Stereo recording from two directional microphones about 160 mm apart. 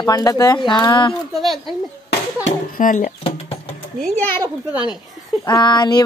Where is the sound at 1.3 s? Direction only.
Centre (ahead or behind).